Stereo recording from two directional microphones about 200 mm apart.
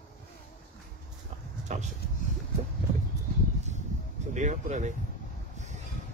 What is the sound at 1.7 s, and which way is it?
Speech, 35° right (ahead or behind).